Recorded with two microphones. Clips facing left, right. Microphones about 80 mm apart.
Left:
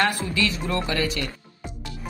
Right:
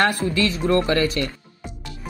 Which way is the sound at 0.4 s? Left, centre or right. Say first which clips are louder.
Right 7 dB; right.